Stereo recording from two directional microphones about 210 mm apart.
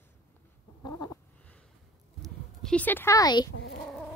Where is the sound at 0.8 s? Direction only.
20° left (ahead or behind).